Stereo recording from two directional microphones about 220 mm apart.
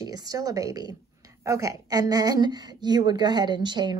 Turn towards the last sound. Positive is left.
turn(degrees=-20)  # may be behind; listen again after turning